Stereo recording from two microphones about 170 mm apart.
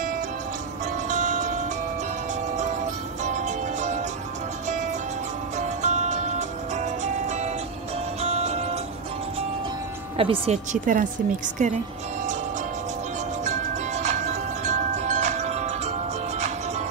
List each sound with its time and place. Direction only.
1.0 s music: 50° right (ahead or behind)
3.3 s music: 45° right (ahead or behind)
5.6 s music: 45° right (ahead or behind)
10.1 s speech: 35° right (ahead or behind)
13.4 s music: 45° right (ahead or behind)